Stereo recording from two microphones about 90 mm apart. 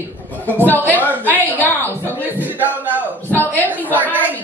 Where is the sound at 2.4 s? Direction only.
20° right (ahead or behind).